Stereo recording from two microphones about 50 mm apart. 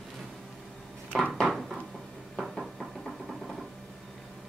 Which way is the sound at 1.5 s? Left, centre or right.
Centre.